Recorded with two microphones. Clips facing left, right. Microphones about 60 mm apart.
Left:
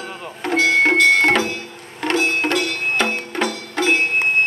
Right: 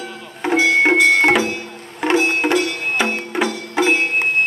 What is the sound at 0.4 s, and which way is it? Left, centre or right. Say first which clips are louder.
Music: right 1 dB; centre.